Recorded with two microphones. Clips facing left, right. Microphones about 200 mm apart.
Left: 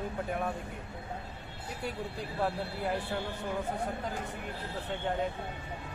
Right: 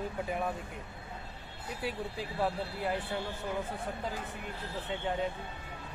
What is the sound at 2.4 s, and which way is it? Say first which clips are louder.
Speech: even; centre (ahead or behind).